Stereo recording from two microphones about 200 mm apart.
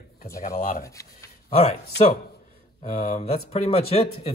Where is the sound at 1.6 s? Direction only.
30° left (ahead or behind).